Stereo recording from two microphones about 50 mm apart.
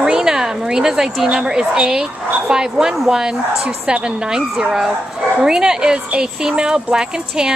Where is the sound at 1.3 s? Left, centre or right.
Centre.